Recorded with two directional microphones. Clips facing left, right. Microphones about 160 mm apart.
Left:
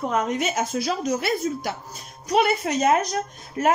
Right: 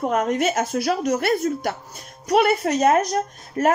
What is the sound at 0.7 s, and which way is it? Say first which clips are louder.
A woman's voice: right 3 dB; 65° right (ahead or behind).